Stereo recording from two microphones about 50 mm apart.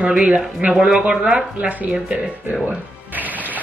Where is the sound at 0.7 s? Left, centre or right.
Centre.